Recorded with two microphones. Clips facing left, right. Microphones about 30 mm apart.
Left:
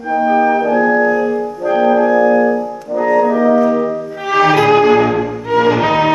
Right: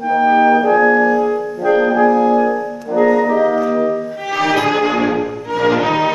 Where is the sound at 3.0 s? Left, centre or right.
Centre.